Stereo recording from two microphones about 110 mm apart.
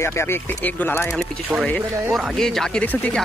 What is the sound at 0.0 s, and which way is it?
Speech, 25° left (ahead or behind).